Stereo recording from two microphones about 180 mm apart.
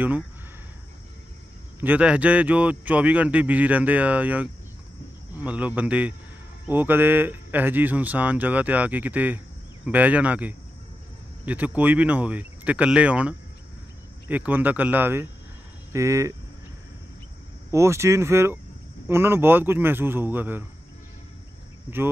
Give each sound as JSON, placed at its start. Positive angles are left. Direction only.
{"t": 1.8, "sound": "a man's voice", "side_deg": -10}
{"t": 17.6, "sound": "a man's voice", "side_deg": -15}